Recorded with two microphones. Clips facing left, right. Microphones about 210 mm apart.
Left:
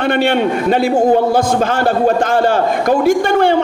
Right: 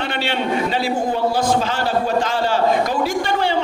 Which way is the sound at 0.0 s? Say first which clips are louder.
Left 9 dB; 55° left (ahead or behind).